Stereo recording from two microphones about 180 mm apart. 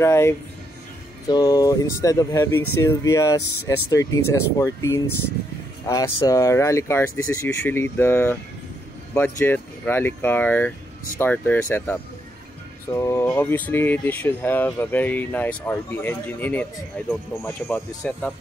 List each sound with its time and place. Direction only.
0.0 s speech: 15° left (ahead or behind)